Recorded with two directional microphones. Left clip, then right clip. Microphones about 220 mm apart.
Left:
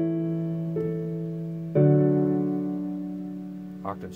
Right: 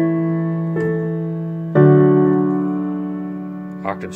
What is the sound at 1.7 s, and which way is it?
Electric piano, 35° right (ahead or behind).